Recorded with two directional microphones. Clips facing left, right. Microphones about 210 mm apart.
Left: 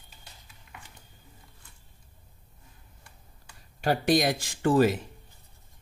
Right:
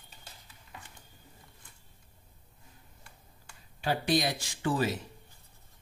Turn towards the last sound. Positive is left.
turn(degrees=50)  # may be behind; listen again after turning